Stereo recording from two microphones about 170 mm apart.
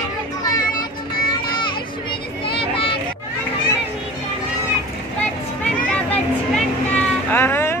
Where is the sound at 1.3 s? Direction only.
30° left (ahead or behind).